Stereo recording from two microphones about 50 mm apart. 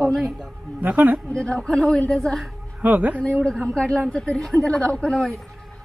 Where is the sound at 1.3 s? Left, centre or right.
Centre.